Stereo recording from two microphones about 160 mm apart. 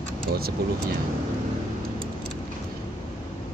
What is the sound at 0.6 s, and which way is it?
Speech, 80° right.